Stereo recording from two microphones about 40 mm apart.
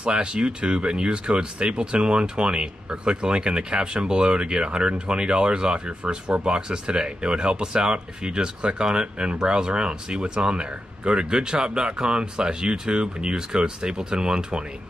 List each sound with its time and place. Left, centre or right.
0.0 s speech: right